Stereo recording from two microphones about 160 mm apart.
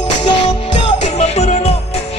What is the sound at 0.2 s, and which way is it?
Music, 40° left (ahead or behind).